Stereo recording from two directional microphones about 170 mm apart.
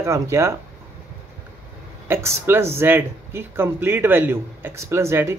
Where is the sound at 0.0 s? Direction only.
15° right (ahead or behind).